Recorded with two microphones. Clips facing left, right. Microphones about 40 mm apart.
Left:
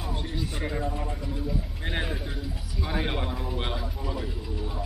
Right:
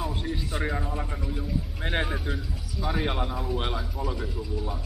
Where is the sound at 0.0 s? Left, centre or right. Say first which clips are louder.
Right 2 dB; centre.